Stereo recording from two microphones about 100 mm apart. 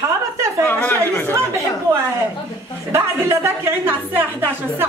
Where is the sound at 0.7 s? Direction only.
20° left (ahead or behind).